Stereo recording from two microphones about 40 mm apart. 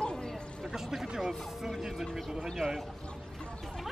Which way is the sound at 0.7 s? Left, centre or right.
Centre.